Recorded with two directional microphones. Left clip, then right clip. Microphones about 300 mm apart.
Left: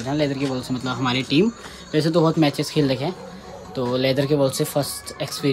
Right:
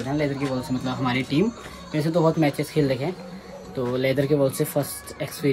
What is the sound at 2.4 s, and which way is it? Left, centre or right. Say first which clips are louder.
Speech: left 2 dB; centre.